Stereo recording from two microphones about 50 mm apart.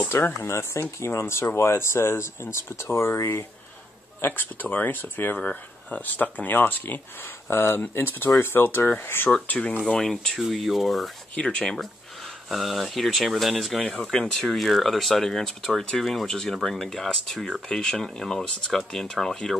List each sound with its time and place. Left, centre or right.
0.1 s speech: left
4.2 s speech: left
5.4 s speech: left
7.4 s speech: left
9.6 s speech: centre
10.5 s speech: centre
11.3 s speech: centre
11.6 s speech: centre
12.4 s speech: centre
17.6 s speech: centre